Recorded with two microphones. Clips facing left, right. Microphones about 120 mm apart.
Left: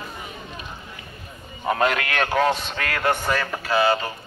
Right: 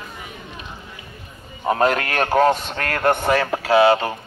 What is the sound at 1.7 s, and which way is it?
A man's voice, 35° right (ahead or behind).